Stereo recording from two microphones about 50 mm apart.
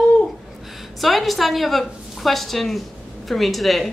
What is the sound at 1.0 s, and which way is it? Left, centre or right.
A woman's voice, centre.